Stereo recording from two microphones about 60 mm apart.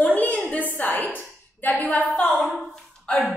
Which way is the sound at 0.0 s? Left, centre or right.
Left.